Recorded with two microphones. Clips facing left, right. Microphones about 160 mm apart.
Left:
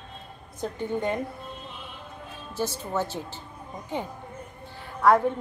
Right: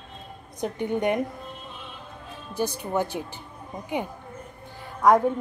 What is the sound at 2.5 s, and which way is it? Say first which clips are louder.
Speech: right 2 dB; 15° right (ahead or behind).